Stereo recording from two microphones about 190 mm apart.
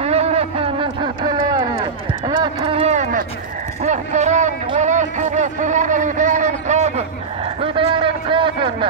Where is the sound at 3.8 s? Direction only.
40° right (ahead or behind).